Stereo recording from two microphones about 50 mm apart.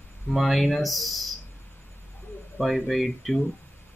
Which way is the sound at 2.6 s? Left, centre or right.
Centre.